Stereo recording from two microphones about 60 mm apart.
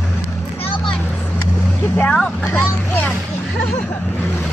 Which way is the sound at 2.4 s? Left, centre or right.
Left.